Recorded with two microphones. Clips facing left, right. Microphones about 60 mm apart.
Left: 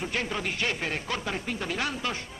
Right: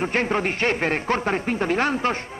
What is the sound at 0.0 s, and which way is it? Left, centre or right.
Speech, right.